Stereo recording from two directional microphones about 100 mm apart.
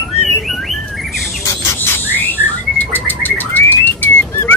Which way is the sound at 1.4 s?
20° left (ahead or behind).